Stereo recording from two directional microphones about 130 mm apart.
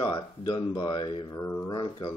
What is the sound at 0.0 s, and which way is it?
Speech, 40° left (ahead or behind).